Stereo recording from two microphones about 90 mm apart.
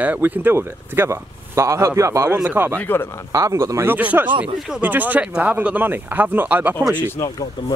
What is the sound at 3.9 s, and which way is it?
Speech, 20° right (ahead or behind).